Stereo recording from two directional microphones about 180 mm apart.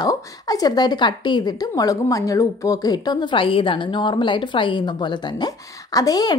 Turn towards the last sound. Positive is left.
turn(degrees=20)  # may be behind; listen again after turning